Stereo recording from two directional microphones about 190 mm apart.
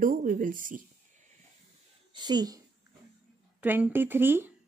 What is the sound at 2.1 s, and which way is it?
Speech, 20° right (ahead or behind).